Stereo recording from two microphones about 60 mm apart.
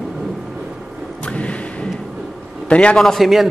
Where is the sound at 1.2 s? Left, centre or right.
Left.